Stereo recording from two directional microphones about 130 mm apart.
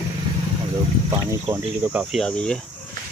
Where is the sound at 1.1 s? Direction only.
20° right (ahead or behind).